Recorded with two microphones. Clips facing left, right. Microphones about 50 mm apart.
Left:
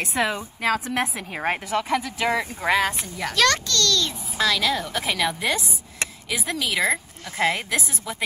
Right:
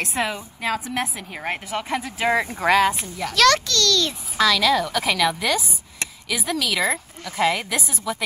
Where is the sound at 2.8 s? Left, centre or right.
Centre.